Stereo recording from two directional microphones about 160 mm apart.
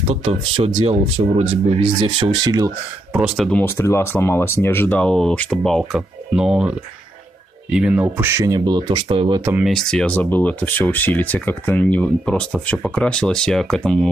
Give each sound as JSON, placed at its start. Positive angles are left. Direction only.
{"t": 0.1, "sound": "speech", "side_deg": -40}
{"t": 3.1, "sound": "speech", "side_deg": -5}
{"t": 3.6, "sound": "speech", "side_deg": 15}
{"t": 9.4, "sound": "speech", "side_deg": -10}
{"t": 9.7, "sound": "speech", "side_deg": 5}